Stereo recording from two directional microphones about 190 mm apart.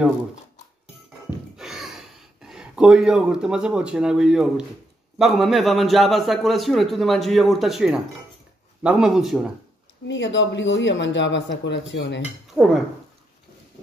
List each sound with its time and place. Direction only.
1.6 s a sound: centre (ahead or behind)
5.2 s a man's voice: centre (ahead or behind)
10.0 s speech: 75° left (ahead or behind)
12.5 s a man's voice: centre (ahead or behind)